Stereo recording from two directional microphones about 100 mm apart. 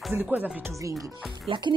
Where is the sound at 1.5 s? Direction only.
55° right (ahead or behind).